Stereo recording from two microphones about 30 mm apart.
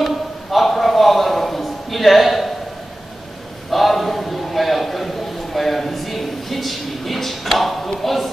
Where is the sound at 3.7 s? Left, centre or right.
Centre.